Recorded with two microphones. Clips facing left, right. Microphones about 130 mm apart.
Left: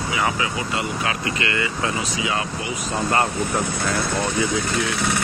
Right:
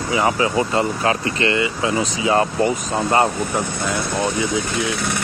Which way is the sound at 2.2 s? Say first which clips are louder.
Right 8 dB; 40° right (ahead or behind).